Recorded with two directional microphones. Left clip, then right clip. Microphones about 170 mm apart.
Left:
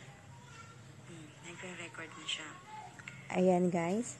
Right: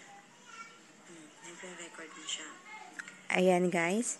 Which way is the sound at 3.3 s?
Centre (ahead or behind).